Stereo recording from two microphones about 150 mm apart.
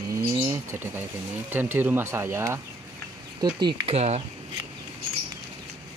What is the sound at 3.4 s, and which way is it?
Speech, 30° right (ahead or behind).